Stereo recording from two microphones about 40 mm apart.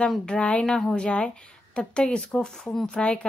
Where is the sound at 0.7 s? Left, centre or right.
Centre.